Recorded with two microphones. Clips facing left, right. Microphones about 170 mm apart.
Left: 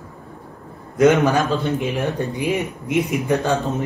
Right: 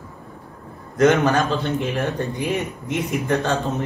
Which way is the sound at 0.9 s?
10° left (ahead or behind).